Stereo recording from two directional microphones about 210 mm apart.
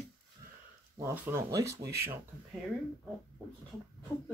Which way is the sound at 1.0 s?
10° right (ahead or behind).